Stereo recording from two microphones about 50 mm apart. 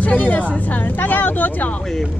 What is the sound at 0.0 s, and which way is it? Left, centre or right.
Speech, left.